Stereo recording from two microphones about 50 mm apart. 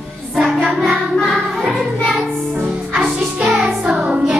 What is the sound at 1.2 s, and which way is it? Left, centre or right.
Music, centre.